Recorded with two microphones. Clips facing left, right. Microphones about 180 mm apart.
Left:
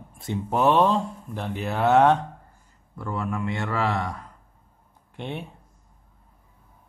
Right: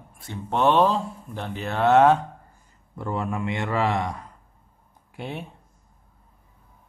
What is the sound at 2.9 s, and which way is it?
A man's voice, 20° right (ahead or behind).